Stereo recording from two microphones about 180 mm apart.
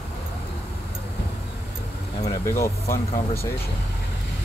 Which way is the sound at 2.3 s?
15° left (ahead or behind).